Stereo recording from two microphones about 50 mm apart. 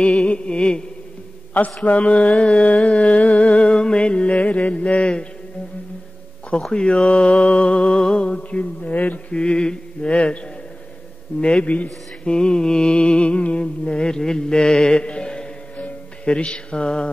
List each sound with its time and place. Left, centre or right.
0.0 s mantra: centre
1.9 s music: left
6.7 s music: centre
9.3 s music: centre
11.4 s a man's voice: left
12.4 s mantra: centre
15.7 s music: left